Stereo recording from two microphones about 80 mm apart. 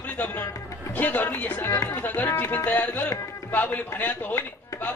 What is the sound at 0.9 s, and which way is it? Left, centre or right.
Speech, left.